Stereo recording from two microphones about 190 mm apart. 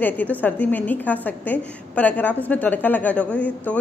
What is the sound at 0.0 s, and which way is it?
A woman's voice, 10° left (ahead or behind).